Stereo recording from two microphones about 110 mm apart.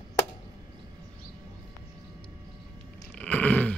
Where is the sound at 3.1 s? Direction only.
15° left (ahead or behind).